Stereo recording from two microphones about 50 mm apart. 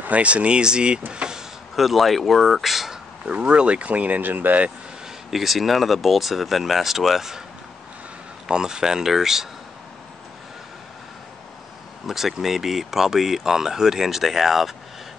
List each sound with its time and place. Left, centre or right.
0.0 s speech: right
1.1 s power windows: centre
1.8 s speech: centre
3.3 s speech: right
5.3 s speech: centre
8.5 s speech: centre
12.1 s speech: centre